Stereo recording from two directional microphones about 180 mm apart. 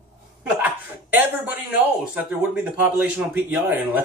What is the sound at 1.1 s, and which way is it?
Speech, 10° right (ahead or behind).